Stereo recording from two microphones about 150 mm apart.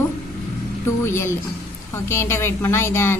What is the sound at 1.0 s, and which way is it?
A woman's voice, 15° left (ahead or behind).